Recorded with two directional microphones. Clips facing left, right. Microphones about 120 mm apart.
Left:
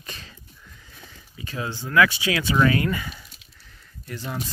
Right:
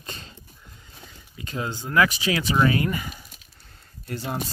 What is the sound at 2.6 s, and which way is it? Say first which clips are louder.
Speech: left 2 dB; 25° right (ahead or behind).